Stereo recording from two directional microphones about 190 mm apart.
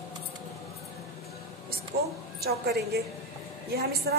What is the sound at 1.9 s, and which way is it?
A woman's voice, 55° right (ahead or behind).